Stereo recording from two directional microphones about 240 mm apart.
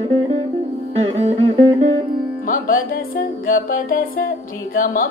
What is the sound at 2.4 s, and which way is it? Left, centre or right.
Carnatic music, left.